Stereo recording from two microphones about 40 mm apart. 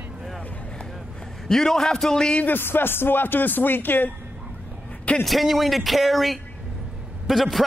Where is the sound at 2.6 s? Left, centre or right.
Left.